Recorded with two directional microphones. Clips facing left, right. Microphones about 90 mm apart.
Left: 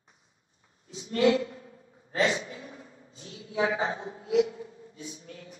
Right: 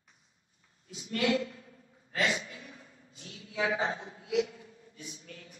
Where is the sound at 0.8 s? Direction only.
30° left (ahead or behind).